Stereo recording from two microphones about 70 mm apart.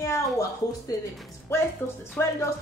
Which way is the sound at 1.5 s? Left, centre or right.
Left.